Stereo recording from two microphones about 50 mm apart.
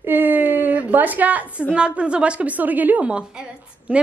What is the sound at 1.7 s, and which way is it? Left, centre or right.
A woman's voice, right.